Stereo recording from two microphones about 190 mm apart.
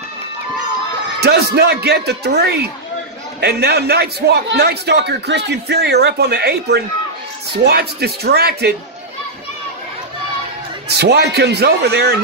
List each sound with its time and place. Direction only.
1.2 s a man's voice: 60° right (ahead or behind)
11.0 s a man's voice: 60° right (ahead or behind)